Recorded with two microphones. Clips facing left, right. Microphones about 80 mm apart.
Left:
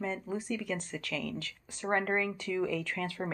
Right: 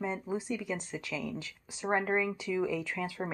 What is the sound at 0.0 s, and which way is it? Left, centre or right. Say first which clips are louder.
Speech: right 1 dB; centre.